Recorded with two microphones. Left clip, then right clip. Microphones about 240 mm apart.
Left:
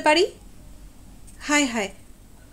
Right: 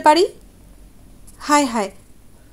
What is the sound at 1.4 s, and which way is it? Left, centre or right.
Speech, right.